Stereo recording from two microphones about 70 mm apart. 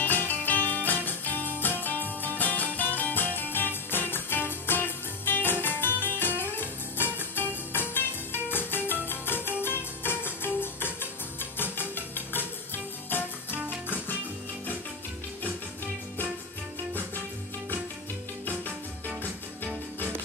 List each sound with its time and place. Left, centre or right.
0.0 s music: left